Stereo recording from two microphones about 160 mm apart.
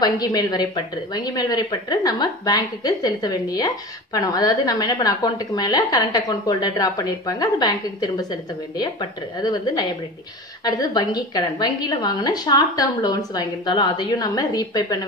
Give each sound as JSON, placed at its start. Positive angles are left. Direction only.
{"t": 0.0, "sound": "a woman's voice", "side_deg": 25}